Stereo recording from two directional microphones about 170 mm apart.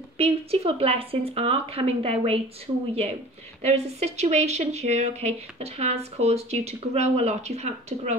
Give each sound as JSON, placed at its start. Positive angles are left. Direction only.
{"t": 0.2, "sound": "speech", "side_deg": -35}